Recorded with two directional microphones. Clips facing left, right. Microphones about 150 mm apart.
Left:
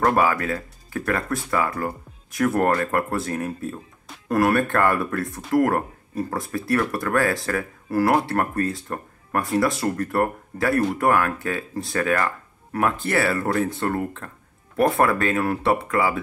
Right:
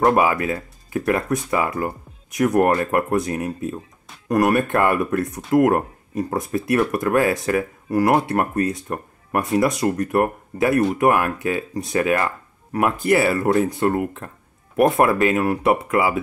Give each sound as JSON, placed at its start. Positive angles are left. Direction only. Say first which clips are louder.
{"t": 0.0, "sound": "speech", "louder": "right 3 dB", "side_deg": -20}